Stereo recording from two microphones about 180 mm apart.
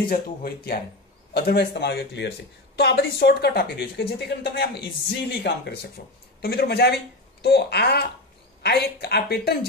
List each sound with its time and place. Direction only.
0.1 s speech: 55° left (ahead or behind)